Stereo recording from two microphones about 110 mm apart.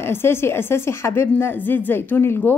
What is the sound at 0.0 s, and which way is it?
A woman's voice, 20° left (ahead or behind).